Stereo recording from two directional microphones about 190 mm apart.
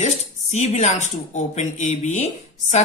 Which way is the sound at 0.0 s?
35° left (ahead or behind).